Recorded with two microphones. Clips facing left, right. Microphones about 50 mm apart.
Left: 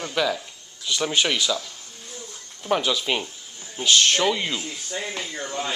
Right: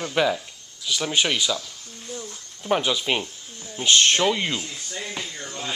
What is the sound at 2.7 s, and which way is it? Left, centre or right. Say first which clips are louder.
Speech: even; centre.